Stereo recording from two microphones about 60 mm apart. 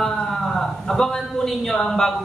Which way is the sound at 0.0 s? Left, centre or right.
Centre.